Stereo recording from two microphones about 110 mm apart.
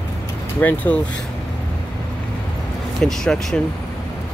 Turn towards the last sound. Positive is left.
turn(degrees=5)  # may be behind; listen again after turning